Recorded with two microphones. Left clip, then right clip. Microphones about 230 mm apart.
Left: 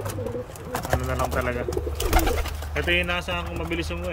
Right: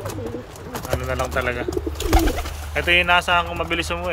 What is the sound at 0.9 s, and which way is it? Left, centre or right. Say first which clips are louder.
Speech: right 3 dB; centre.